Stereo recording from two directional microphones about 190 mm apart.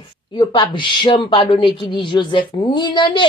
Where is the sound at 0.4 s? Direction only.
25° left (ahead or behind).